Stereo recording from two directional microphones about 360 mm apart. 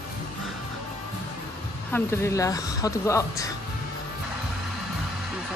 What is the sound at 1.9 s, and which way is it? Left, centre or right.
A woman's voice, centre.